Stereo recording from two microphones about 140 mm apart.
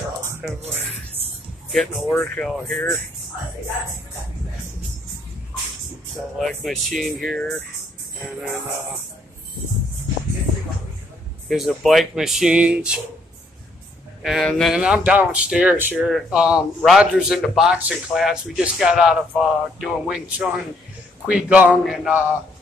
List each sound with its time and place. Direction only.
0.6 s speech: 50° right (ahead or behind)
1.7 s speech: centre (ahead or behind)
2.0 s speech: 10° left (ahead or behind)
6.3 s speech: centre (ahead or behind)
11.4 s speech: centre (ahead or behind)
14.2 s speech: centre (ahead or behind)
14.8 s speech: 10° right (ahead or behind)
21.3 s speech: 5° right (ahead or behind)